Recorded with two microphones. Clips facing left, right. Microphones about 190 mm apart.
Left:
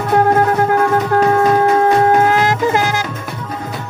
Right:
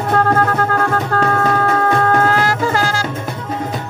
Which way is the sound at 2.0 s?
15° left (ahead or behind).